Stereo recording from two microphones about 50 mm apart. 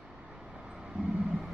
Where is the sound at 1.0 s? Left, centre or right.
Centre.